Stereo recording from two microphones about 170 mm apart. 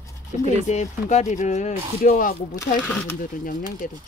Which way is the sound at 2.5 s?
15° left (ahead or behind).